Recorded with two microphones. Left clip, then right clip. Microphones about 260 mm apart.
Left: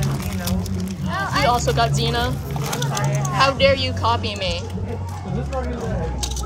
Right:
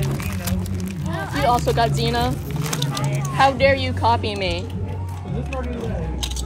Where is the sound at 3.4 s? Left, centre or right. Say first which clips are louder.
Right 1 dB; right.